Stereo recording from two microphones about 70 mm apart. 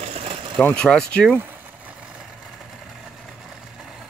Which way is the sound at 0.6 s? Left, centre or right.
Centre.